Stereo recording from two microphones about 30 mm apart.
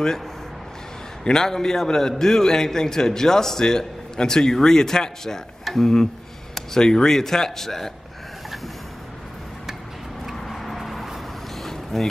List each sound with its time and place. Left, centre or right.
1.3 s a man's voice: centre
10.4 s vehicle: centre
11.6 s vehicle: centre